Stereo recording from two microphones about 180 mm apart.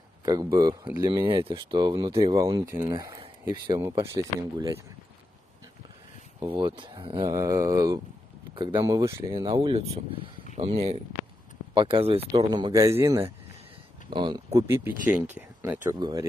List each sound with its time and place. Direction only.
0.2 s speech: 20° right (ahead or behind)
6.4 s speech: 30° right (ahead or behind)